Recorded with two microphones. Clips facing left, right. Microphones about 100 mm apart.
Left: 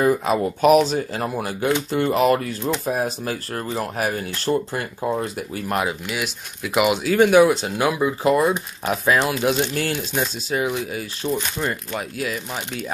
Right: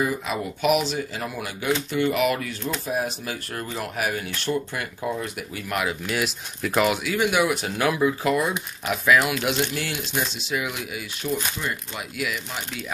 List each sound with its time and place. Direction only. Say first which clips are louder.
0.0 s speech: left 7 dB; 50° left (ahead or behind); by 5.9 s 30° left (ahead or behind)
6.0 s speech: right 1 dB; centre (ahead or behind)
7.1 s speech: left 8 dB; 45° left (ahead or behind)
7.4 s speech: left 4 dB; 25° left (ahead or behind); by 12.8 s 40° left (ahead or behind)